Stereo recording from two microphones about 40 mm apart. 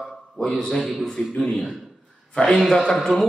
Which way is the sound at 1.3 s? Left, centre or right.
Left.